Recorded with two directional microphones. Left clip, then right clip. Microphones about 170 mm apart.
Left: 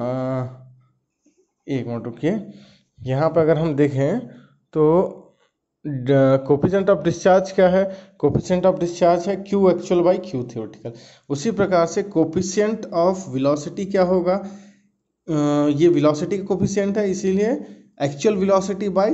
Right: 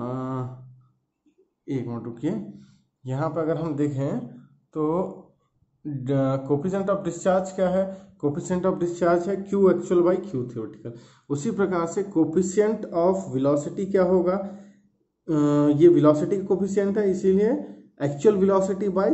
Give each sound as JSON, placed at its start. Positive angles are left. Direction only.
{"t": 0.0, "sound": "a sound", "side_deg": 15}
{"t": 1.7, "sound": "speech", "side_deg": 20}
{"t": 8.5, "sound": "speech", "side_deg": 20}